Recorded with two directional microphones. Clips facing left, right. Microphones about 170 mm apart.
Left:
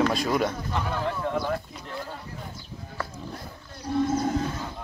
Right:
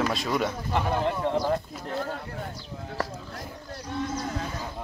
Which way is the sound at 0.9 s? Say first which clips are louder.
Right 3 dB; 30° right (ahead or behind).